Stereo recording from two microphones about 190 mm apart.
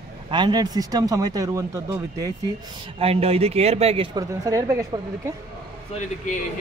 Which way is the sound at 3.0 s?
30° right (ahead or behind).